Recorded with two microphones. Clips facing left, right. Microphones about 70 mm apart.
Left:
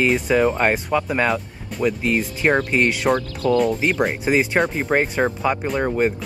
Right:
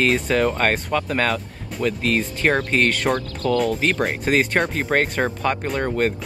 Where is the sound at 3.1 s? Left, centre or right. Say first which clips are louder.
Left 2 dB; left.